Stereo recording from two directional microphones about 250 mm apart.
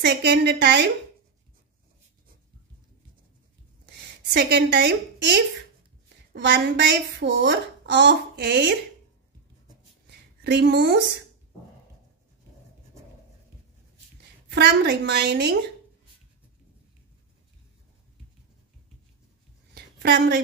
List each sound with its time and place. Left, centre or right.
0.0 s a woman's voice: right
4.3 s a woman's voice: right
10.4 s a woman's voice: right
14.5 s a woman's voice: right
19.7 s a sound: right